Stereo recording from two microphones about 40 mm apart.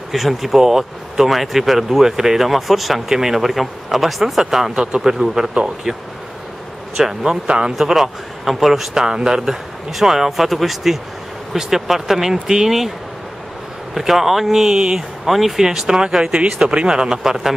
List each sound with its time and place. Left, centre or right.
0.1 s speech: centre
7.0 s speech: centre
7.4 s speech: right
7.7 s speech: centre
8.9 s speech: centre
9.4 s speech: centre
13.9 s speech: centre
14.8 s speech: centre
15.2 s speech: centre
15.6 s speech: centre